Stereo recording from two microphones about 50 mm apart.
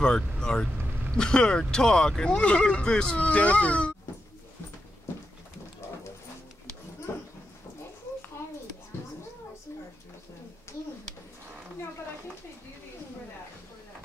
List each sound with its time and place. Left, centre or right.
0.0 s speech: centre
3.2 s speech: left
7.1 s dog: left